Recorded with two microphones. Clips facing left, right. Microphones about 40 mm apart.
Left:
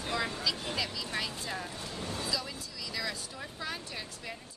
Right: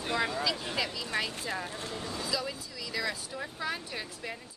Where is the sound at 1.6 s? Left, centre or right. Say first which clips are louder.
Right 2 dB; right.